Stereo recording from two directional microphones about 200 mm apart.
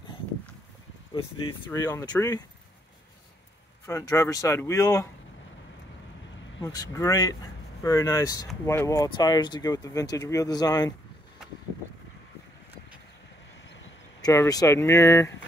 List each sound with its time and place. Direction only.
1.1 s speech: 20° left (ahead or behind)
3.8 s speech: 15° left (ahead or behind)
6.6 s speech: 20° left (ahead or behind)
13.7 s a sound: 70° left (ahead or behind)
14.2 s speech: 15° left (ahead or behind)